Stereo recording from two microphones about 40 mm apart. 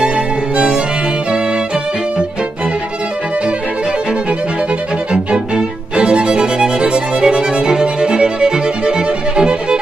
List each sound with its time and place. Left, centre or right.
0.0 s music: right
5.1 s music: right